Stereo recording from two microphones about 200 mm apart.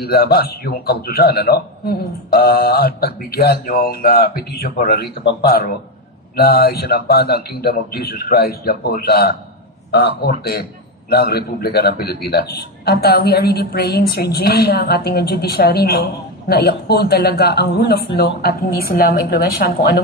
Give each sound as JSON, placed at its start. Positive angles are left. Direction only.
{"t": 0.0, "sound": "a man's voice", "side_deg": 50}